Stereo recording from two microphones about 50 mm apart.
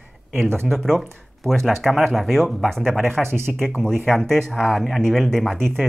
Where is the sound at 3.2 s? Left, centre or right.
Right.